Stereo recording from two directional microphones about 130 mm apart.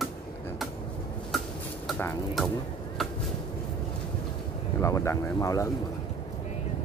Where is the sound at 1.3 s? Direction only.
Centre (ahead or behind).